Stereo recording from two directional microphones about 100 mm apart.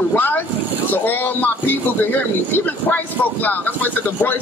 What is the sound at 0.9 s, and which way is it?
Speech, 20° left (ahead or behind).